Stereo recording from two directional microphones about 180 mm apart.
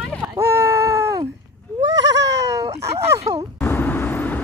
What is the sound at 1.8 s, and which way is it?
Baby cry, 80° right.